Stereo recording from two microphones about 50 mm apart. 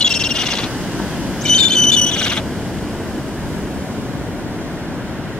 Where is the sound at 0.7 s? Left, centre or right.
Centre.